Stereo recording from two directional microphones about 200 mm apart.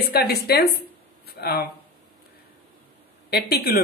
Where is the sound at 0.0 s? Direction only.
50° left (ahead or behind).